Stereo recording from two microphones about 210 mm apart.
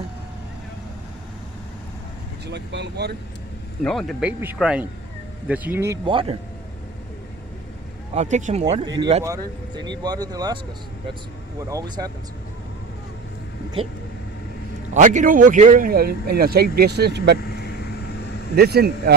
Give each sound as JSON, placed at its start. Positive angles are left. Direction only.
{"t": 2.4, "sound": "a man's voice", "side_deg": -55}
{"t": 3.8, "sound": "speech", "side_deg": 0}
{"t": 6.0, "sound": "speech", "side_deg": -25}
{"t": 8.1, "sound": "speech", "side_deg": -35}
{"t": 8.8, "sound": "speech", "side_deg": -20}
{"t": 11.7, "sound": "speech", "side_deg": -15}
{"t": 15.0, "sound": "a man's voice", "side_deg": -35}
{"t": 18.6, "sound": "a man's voice", "side_deg": -50}